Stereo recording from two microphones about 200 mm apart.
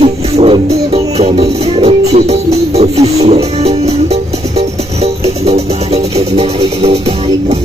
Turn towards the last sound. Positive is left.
turn(degrees=-30)  # may be behind; listen again after turning